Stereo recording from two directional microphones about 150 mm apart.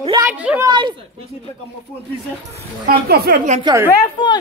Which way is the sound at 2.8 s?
90° right.